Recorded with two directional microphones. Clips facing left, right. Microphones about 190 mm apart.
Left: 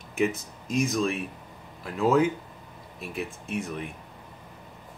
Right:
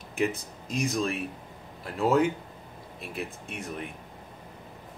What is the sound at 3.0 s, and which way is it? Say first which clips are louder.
Speech: left 2 dB; centre (ahead or behind).